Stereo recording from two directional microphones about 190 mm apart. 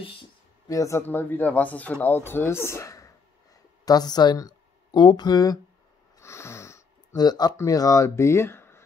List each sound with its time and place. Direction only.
0.7 s speech: 15° left (ahead or behind)